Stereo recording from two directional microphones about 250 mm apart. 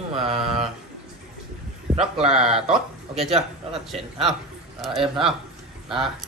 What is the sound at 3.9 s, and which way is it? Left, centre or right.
A man's voice, centre.